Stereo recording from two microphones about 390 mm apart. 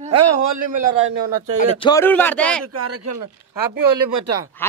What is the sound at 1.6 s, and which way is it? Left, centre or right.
Speech, centre.